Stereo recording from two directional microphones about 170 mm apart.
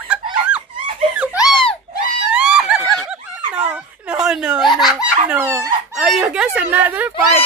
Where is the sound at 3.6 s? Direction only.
5° right (ahead or behind).